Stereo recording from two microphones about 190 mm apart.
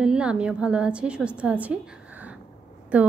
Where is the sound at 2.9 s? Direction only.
5° right (ahead or behind).